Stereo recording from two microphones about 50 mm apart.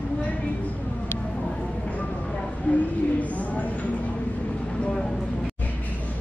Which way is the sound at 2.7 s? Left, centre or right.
Left.